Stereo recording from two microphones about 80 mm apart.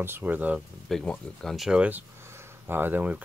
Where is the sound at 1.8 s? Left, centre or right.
Right.